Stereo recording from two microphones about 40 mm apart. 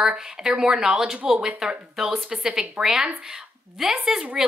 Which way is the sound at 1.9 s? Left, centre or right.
Centre.